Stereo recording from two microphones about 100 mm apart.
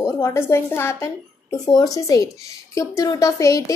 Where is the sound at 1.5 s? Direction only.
40° left (ahead or behind).